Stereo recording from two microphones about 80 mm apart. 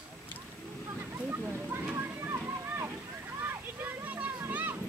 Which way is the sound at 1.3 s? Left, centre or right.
Right.